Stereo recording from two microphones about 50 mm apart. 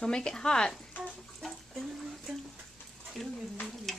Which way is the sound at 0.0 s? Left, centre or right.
Centre.